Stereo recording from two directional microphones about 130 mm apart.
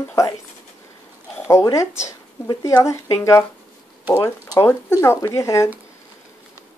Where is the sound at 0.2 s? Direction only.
25° left (ahead or behind).